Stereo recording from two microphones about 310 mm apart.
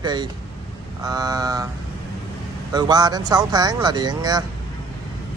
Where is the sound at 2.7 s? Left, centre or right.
Centre.